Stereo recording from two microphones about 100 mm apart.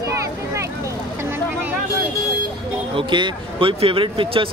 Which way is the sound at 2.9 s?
55° right (ahead or behind).